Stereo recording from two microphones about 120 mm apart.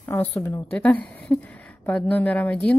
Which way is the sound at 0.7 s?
10° left (ahead or behind).